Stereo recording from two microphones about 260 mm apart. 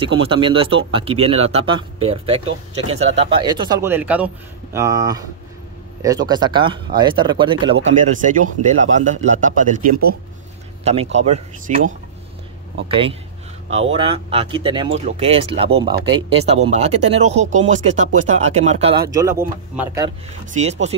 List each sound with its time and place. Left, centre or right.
0.0 s speech: centre
7.8 s speech: right; by 20.1 s centre
20.5 s speech: right